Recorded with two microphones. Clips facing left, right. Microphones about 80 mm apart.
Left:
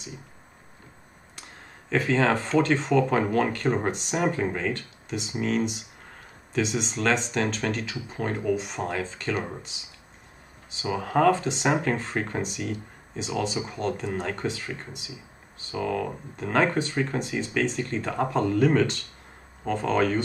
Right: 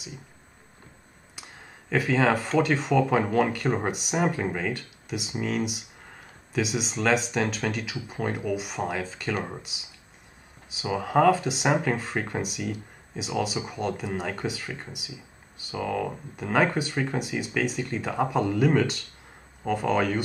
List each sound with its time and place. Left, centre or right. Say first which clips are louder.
1.9 s speech: even; centre